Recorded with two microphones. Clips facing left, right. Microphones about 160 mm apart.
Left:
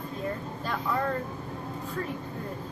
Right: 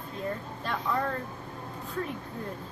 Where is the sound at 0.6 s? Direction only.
Centre (ahead or behind).